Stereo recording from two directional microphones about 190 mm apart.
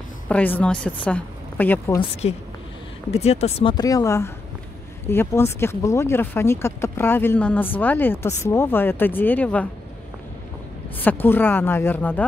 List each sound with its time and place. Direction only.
0.3 s speech: 5° left (ahead or behind)
2.2 s a woman's voice: 35° left (ahead or behind); by 9.7 s 5° left (ahead or behind)
11.0 s speech: 10° left (ahead or behind)